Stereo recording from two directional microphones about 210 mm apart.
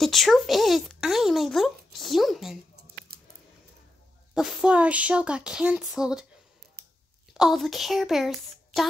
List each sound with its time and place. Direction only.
0.0 s a child's voice: centre (ahead or behind)
4.3 s speech: 5° right (ahead or behind)
6.8 s a sound: 45° right (ahead or behind)
7.3 s speech: centre (ahead or behind)